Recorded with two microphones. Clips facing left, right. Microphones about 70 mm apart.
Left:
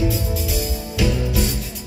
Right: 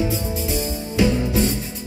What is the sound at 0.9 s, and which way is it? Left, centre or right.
Music, right.